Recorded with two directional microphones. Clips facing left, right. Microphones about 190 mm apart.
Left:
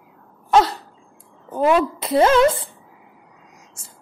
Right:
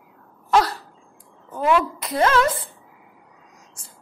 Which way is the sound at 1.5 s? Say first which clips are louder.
Left 3 dB; 30° left (ahead or behind).